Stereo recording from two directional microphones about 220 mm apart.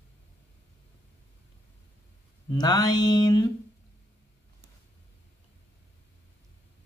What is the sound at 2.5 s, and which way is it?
Mantra, 20° left (ahead or behind).